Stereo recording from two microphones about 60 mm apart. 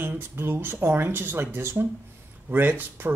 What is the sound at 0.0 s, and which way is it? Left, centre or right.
Speech, right.